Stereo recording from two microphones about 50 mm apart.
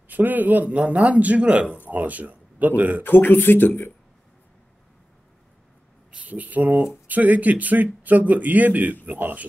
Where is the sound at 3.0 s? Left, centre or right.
Left.